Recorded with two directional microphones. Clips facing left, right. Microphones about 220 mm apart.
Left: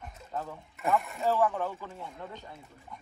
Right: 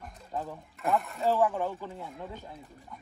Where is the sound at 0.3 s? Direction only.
10° right (ahead or behind).